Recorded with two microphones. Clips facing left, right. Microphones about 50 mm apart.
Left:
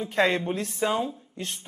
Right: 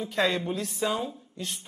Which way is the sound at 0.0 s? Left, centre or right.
Left.